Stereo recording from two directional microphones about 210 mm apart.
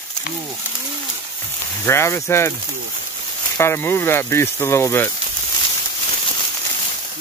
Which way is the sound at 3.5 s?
10° left (ahead or behind).